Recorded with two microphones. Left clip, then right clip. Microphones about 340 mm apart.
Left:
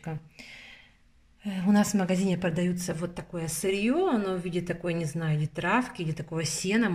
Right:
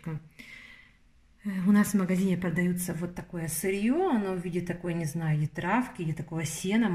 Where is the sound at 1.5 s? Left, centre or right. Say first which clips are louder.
Left 1 dB; centre.